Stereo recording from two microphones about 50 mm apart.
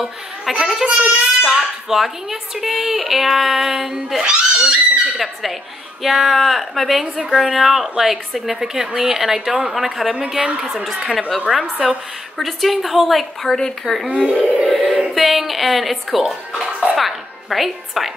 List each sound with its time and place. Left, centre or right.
0.0 s a child's voice: centre
0.7 s a woman's voice: centre
4.2 s speech: centre
5.2 s speech: centre
8.7 s a woman's voice: centre
10.1 s a woman's voice: centre
10.7 s speech: centre
14.0 s a woman's voice: centre
14.7 s music: centre
15.0 s speech: centre
16.9 s music: centre